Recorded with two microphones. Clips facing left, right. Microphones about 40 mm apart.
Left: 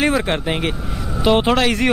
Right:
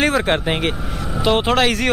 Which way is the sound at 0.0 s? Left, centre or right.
Centre.